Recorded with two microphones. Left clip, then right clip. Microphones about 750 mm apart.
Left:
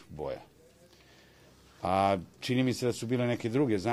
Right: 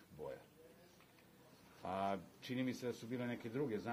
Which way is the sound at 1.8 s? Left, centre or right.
Left.